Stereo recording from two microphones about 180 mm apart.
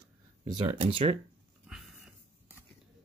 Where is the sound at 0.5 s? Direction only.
30° right (ahead or behind).